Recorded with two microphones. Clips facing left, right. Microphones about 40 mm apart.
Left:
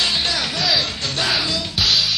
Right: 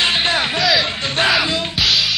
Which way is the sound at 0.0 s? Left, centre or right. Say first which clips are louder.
Right 4 dB; right.